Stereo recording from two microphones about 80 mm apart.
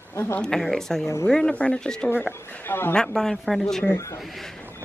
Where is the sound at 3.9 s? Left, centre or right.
Left.